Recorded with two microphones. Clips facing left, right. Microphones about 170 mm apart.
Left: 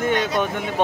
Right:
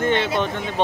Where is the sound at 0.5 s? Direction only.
10° left (ahead or behind).